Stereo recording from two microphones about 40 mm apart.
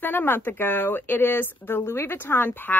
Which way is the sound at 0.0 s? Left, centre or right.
Left.